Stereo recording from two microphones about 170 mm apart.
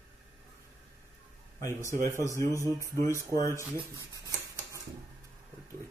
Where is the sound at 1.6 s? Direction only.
15° left (ahead or behind).